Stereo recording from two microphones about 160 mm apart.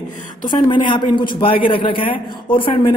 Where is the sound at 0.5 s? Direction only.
30° left (ahead or behind).